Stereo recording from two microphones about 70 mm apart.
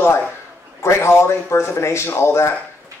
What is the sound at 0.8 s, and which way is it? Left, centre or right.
Speech, left.